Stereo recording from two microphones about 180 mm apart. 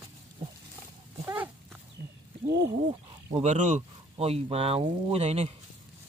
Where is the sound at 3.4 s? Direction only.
40° right (ahead or behind).